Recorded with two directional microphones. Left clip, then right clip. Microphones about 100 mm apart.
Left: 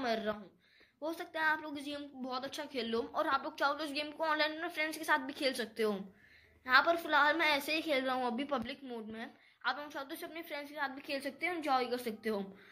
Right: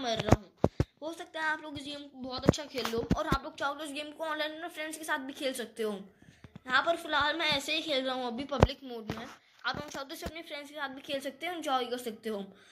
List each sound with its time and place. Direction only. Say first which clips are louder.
1.0 s a woman's voice: left 1 dB; 15° right (ahead or behind)
8.6 s a woman's voice: right 4 dB; 40° right (ahead or behind)
9.2 s a woman's voice: right 1 dB; 25° right (ahead or behind)
11.0 s a woman's voice: right 2 dB; 40° right (ahead or behind)